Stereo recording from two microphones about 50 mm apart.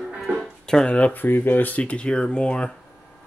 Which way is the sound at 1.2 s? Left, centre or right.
Left.